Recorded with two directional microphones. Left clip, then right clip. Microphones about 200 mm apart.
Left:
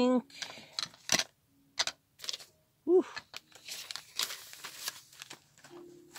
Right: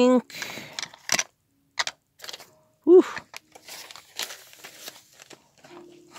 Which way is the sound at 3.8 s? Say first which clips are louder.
Right 2 dB; 10° right (ahead or behind).